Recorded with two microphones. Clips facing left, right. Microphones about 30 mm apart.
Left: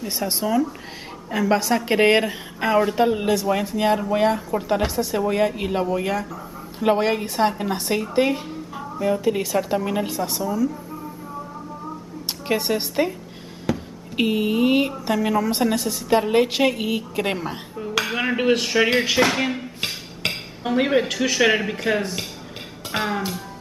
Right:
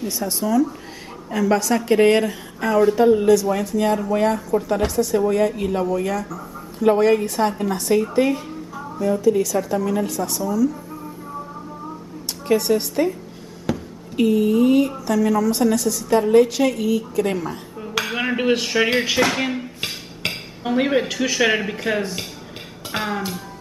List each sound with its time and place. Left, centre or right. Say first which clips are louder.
0.3 s a woman's voice: right 3 dB; left
8.7 s a sound: right 1 dB; left
9.2 s a woman's voice: right 3 dB; left
12.4 s speech: right 4 dB; left
13.7 s a sound: even; centre
14.1 s a woman's voice: right 4 dB; left
17.7 s hammer: left 1 dB; centre
22.8 s music: even; centre